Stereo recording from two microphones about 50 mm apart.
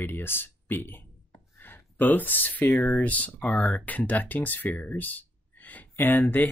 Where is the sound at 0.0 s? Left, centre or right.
Left.